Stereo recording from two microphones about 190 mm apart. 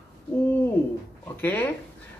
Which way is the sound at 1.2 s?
10° left (ahead or behind).